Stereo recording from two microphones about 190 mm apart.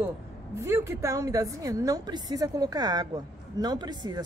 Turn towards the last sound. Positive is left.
turn(degrees=-20)  # may be behind; listen again after turning